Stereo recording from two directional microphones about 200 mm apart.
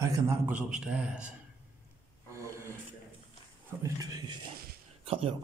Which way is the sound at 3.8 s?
20° right (ahead or behind).